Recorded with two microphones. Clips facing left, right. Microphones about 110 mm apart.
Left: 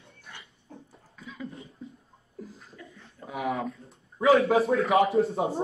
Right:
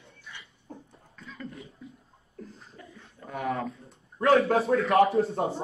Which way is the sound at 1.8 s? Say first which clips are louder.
Left 3 dB; 30° left (ahead or behind).